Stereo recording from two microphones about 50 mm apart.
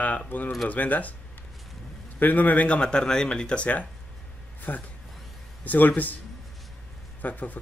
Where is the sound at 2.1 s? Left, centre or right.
Left; by 3.6 s centre.